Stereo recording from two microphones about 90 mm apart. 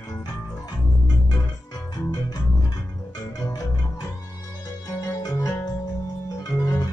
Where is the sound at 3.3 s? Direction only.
45° left (ahead or behind).